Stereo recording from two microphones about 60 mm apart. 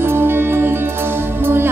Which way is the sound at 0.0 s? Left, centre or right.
Right.